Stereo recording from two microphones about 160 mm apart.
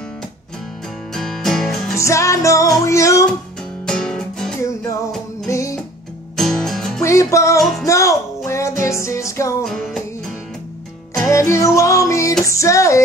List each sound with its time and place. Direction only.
1.1 s music: centre (ahead or behind)
2.0 s music: 20° left (ahead or behind)
3.8 s music: 5° left (ahead or behind)
5.5 s music: 20° left (ahead or behind)
6.3 s music: centre (ahead or behind)
7.0 s music: 20° left (ahead or behind)
7.5 s music: centre (ahead or behind)
7.8 s music: 20° left (ahead or behind)
9.7 s music: 5° left (ahead or behind)
11.2 s music: 20° left (ahead or behind)